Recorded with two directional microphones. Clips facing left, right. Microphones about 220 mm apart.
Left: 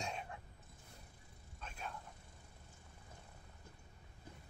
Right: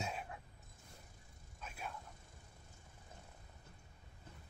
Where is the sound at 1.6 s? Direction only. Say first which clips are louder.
Even; 5° right (ahead or behind).